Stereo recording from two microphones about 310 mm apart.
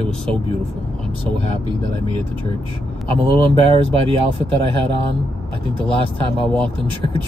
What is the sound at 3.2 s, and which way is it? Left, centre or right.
Speech, centre.